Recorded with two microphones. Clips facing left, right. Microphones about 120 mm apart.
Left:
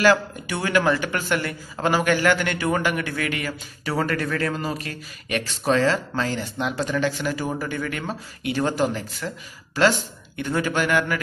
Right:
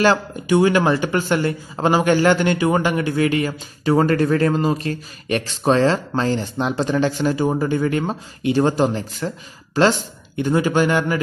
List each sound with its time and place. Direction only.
0.0 s speech: 25° right (ahead or behind)